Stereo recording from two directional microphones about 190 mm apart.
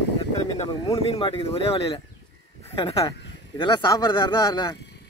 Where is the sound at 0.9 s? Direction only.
30° left (ahead or behind).